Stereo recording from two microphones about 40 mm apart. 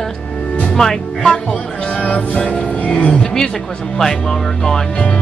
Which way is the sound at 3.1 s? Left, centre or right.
Centre.